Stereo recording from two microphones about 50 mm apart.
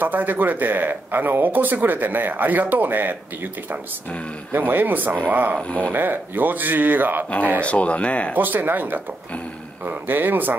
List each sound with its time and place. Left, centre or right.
0.0 s speech: right
4.5 s speech: right
5.6 s speech: left
5.9 s speech: right
7.2 s speech: left
8.4 s speech: right